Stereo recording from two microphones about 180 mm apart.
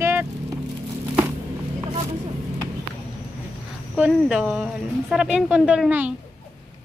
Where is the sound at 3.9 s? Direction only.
5° right (ahead or behind).